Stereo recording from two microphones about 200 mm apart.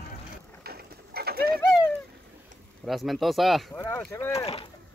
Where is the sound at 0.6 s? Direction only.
50° right (ahead or behind).